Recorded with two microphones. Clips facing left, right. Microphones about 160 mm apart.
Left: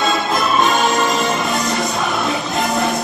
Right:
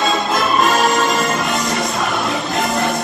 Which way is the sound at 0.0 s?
Centre (ahead or behind).